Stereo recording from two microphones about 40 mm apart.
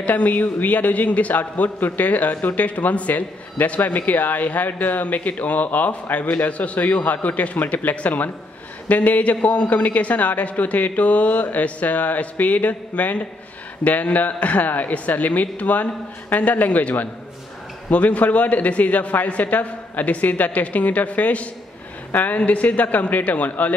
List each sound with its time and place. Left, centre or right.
0.0 s a man's voice: left